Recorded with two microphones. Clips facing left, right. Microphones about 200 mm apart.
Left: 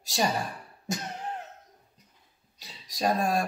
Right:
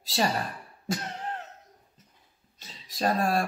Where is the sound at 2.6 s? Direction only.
15° left (ahead or behind).